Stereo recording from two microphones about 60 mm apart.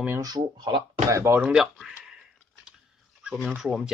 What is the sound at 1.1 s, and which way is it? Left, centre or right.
Speech, right.